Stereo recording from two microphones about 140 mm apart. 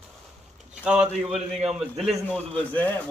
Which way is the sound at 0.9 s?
5° right (ahead or behind).